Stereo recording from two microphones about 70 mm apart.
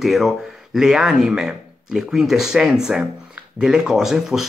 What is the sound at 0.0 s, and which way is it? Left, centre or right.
Speech, centre.